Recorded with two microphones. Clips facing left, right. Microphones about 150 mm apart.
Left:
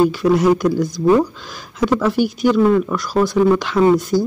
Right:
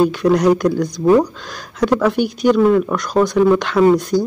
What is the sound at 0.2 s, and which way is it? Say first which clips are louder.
Speech: right 1 dB; 5° left (ahead or behind).